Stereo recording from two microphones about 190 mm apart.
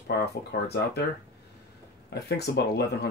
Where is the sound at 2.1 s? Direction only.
60° left (ahead or behind).